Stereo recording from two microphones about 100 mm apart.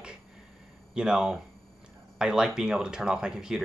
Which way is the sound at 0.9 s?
5° right (ahead or behind).